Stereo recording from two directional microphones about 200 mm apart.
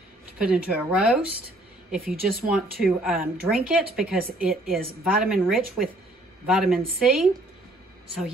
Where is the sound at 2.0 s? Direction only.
45° right (ahead or behind).